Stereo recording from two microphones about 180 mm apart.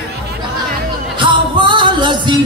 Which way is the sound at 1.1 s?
25° right (ahead or behind).